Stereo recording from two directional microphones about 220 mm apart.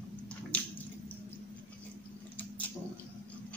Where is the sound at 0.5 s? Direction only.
5° left (ahead or behind).